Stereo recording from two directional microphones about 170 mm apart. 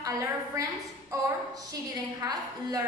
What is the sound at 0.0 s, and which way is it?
A woman's voice, 20° right (ahead or behind).